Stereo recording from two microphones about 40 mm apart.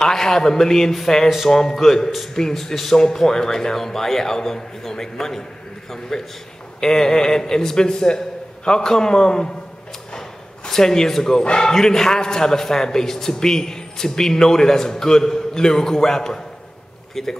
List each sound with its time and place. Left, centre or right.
0.0 s a man's voice: centre
10.7 s a man's voice: centre